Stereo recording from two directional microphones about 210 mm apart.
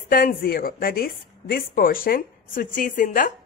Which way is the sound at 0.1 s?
45° left (ahead or behind).